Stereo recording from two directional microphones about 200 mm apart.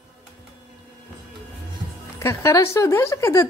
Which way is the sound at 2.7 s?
15° left (ahead or behind).